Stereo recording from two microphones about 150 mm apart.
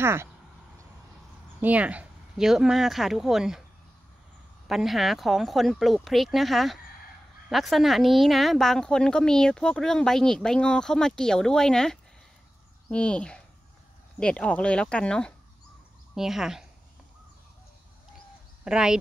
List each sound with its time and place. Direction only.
0.0 s speech: 15° right (ahead or behind)
1.6 s speech: 10° right (ahead or behind)
4.6 s speech: centre (ahead or behind)
18.6 s speech: 5° right (ahead or behind)